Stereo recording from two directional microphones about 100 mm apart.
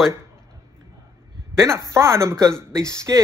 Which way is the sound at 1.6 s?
25° right (ahead or behind).